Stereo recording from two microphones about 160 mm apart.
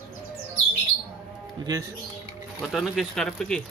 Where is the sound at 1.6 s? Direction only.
25° right (ahead or behind).